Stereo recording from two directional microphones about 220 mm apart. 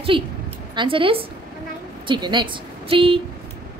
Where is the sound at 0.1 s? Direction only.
25° right (ahead or behind).